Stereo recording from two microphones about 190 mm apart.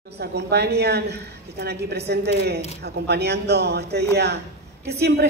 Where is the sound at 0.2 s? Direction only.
60° right (ahead or behind).